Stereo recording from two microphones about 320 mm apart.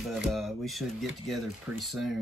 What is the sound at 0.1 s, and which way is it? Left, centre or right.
Speech, centre.